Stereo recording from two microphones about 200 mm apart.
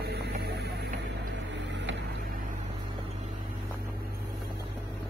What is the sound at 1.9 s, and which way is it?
Vehicle, 65° right (ahead or behind).